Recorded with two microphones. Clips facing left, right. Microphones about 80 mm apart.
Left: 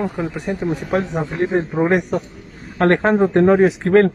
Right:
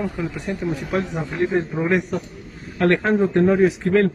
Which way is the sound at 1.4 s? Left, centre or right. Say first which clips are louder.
Left 3 dB; left.